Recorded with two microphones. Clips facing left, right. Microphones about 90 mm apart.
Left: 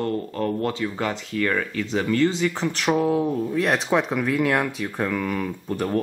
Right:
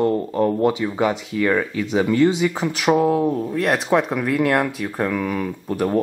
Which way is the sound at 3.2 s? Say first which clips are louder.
Right 3 dB; 15° right (ahead or behind).